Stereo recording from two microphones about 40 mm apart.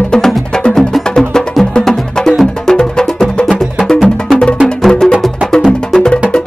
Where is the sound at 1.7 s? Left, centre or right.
Centre.